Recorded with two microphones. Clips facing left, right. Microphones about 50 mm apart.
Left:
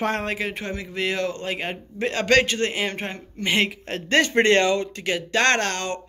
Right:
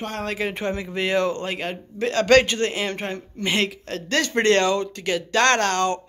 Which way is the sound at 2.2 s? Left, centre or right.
Centre.